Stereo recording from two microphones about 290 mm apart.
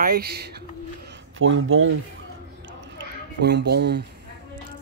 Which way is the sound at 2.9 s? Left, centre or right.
Right.